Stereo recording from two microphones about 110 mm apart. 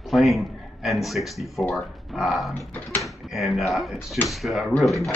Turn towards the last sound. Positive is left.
turn(degrees=0)  # may be behind; listen again after turning